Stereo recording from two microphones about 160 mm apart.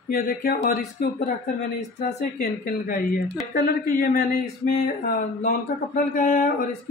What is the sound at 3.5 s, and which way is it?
Speech, 80° left.